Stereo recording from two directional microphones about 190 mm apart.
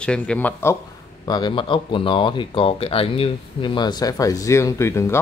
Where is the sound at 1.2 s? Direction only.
25° left (ahead or behind).